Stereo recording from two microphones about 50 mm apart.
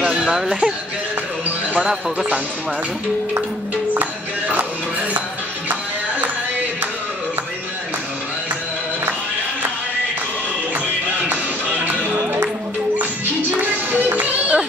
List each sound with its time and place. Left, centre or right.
0.2 s speech: centre
3.9 s music: right
14.1 s music: right